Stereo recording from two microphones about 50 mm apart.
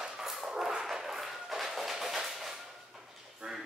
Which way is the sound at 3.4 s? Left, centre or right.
Right.